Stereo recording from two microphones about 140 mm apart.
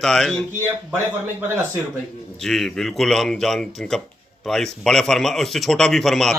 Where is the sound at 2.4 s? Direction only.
5° left (ahead or behind).